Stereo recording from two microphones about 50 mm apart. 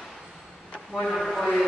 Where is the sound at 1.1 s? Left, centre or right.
Centre.